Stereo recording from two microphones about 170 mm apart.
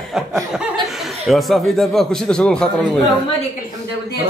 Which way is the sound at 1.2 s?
Centre (ahead or behind).